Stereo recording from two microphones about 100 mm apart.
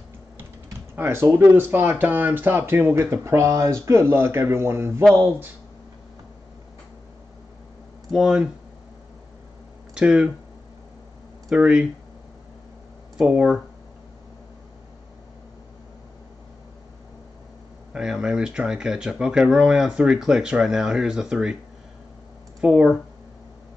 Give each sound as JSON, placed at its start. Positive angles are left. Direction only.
{"t": 0.9, "sound": "speech", "side_deg": -25}
{"t": 8.1, "sound": "speech", "side_deg": -5}
{"t": 9.9, "sound": "speech", "side_deg": -10}
{"t": 11.5, "sound": "speech", "side_deg": -10}
{"t": 13.2, "sound": "speech", "side_deg": -10}
{"t": 17.9, "sound": "speech", "side_deg": -5}
{"t": 22.6, "sound": "speech", "side_deg": -10}